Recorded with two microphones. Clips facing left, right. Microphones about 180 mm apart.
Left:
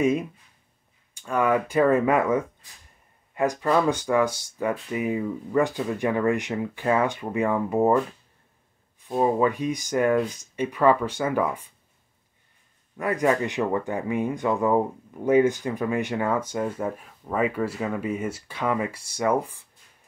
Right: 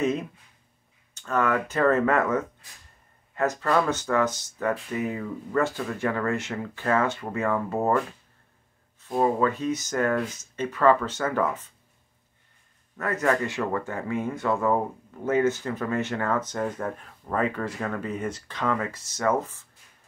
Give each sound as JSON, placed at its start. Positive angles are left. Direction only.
{"t": 1.1, "sound": "speech", "side_deg": 10}
{"t": 9.0, "sound": "speech", "side_deg": 15}
{"t": 12.9, "sound": "speech", "side_deg": 15}